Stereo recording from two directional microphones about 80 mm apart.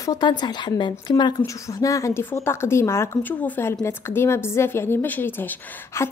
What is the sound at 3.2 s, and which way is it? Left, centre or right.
Speech, centre.